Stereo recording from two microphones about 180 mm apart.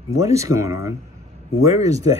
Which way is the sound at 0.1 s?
15° right (ahead or behind).